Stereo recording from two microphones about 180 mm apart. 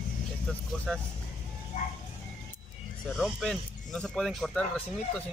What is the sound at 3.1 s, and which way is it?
Speech, centre (ahead or behind).